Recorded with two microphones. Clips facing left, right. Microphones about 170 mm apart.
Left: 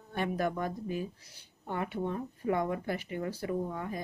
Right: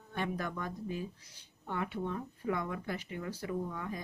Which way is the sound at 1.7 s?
50° left (ahead or behind).